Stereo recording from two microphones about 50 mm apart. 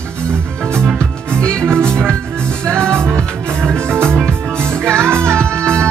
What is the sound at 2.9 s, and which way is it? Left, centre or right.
Music, right.